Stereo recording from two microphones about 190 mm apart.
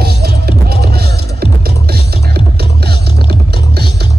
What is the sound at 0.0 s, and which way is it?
Music, 55° right (ahead or behind).